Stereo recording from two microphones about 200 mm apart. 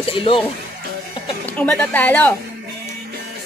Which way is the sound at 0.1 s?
25° left (ahead or behind).